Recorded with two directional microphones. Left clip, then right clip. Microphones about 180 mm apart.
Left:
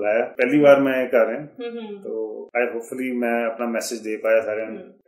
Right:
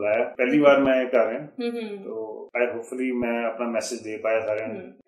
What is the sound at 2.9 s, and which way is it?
Speech, 35° left (ahead or behind).